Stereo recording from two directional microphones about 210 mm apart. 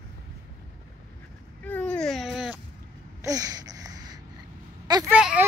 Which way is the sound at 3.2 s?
15° right (ahead or behind).